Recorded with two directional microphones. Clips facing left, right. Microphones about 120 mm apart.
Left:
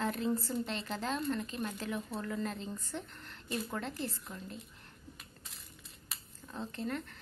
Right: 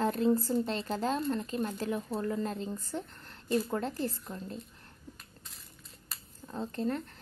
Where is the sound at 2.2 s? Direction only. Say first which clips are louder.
Right 5 dB; 30° right (ahead or behind).